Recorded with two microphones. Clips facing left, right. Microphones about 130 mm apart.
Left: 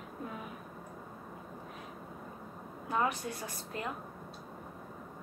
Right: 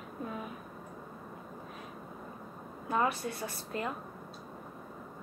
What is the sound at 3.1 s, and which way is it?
Speech, 20° left (ahead or behind).